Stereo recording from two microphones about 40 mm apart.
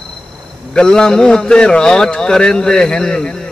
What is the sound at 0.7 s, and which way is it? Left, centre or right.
Speech, centre.